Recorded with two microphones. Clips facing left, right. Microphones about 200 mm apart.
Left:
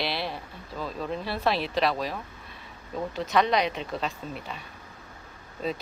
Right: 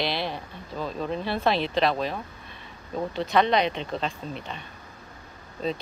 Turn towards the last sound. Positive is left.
turn(degrees=5)  # may be behind; listen again after turning